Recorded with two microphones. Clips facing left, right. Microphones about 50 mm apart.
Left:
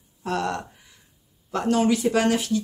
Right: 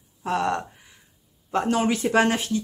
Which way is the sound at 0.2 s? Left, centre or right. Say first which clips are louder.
Right 2 dB; right.